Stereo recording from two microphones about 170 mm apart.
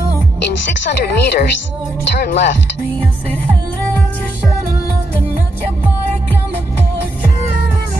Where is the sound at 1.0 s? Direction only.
75° left (ahead or behind).